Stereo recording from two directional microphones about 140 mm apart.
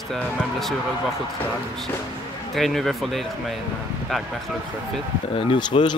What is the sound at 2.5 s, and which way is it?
Speech, centre (ahead or behind).